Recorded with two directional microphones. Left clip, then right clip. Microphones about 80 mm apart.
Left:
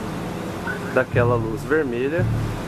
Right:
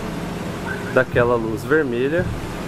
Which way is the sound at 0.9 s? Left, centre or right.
Centre.